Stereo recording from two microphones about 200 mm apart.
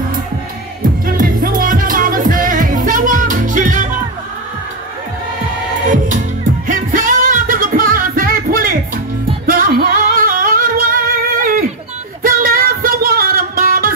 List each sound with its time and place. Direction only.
1.0 s music: 45° right (ahead or behind)
5.9 s music: 40° right (ahead or behind)